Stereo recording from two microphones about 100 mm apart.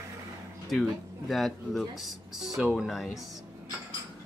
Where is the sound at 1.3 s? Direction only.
Centre (ahead or behind).